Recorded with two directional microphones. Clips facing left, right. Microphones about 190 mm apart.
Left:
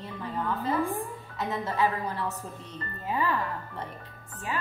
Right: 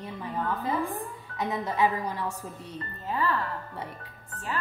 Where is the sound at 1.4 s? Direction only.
15° right (ahead or behind).